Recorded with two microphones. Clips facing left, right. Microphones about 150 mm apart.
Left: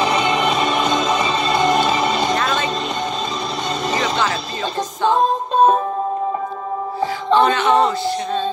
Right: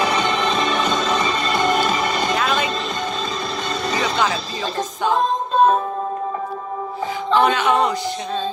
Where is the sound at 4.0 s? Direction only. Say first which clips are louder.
Even; 10° right (ahead or behind).